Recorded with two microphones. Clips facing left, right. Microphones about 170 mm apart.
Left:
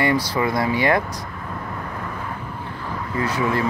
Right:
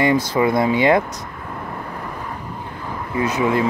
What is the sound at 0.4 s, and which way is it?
Speech, 20° right (ahead or behind).